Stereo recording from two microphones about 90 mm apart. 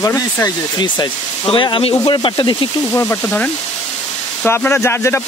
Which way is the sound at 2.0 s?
65° left (ahead or behind).